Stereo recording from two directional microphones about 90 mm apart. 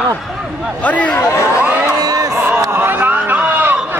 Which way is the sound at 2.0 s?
40° right (ahead or behind).